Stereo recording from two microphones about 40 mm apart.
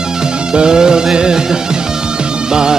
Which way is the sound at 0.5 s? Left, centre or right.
Centre.